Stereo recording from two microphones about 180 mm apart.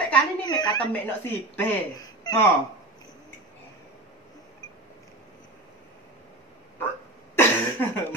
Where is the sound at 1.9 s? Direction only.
20° left (ahead or behind).